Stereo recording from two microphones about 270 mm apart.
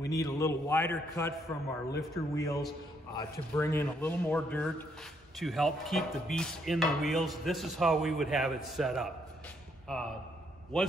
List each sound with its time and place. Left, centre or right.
0.1 s speech: centre